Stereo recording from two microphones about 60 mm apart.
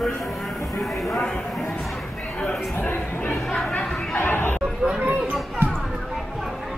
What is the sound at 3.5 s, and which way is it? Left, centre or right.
Chatter, centre.